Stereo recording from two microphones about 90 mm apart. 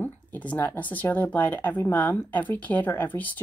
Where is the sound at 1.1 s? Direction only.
20° left (ahead or behind).